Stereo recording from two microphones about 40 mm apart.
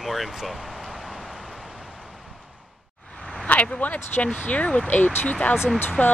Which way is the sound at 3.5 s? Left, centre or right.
Left.